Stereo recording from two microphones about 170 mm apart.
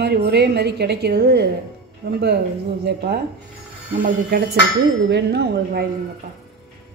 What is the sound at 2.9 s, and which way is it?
Speech, 70° right (ahead or behind).